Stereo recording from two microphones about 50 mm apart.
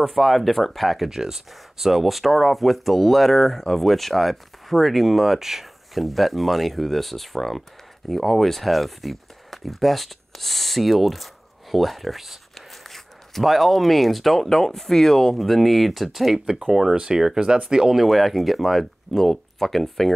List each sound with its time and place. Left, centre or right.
0.0 s speech: centre